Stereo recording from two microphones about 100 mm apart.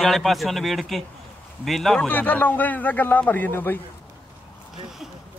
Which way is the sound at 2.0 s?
20° left (ahead or behind).